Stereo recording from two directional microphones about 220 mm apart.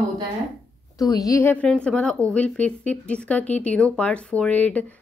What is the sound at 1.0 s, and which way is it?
A woman's voice, 15° left (ahead or behind).